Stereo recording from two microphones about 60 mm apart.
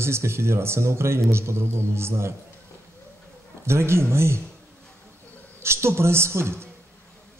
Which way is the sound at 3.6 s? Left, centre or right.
Right.